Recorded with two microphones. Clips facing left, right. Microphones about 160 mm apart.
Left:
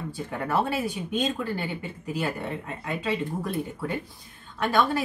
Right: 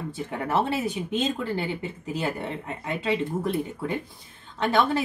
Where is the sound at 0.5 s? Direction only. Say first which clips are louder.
Right 1 dB; 25° right (ahead or behind).